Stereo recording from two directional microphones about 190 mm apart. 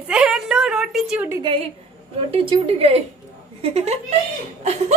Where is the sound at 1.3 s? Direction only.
25° right (ahead or behind).